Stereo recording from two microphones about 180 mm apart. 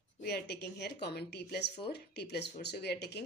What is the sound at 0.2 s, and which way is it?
A woman's voice, 65° left (ahead or behind).